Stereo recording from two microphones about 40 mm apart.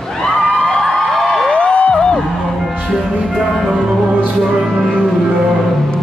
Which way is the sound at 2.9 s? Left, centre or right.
Centre.